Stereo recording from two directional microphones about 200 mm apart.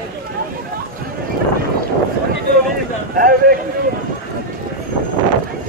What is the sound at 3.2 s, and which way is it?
Speech, 45° right (ahead or behind).